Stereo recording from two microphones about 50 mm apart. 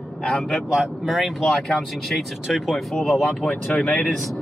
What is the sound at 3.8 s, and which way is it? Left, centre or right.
Speech, left.